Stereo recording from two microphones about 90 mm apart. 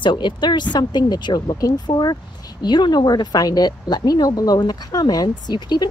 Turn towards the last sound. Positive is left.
turn(degrees=55)  # may be behind; listen again after turning